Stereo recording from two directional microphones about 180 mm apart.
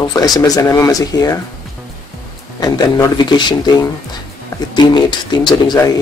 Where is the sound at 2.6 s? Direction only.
25° left (ahead or behind).